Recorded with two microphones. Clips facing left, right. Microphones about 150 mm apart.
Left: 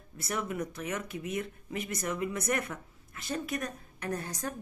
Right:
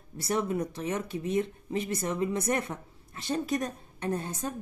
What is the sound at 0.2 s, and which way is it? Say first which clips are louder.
Speech: right 5 dB; 30° right (ahead or behind).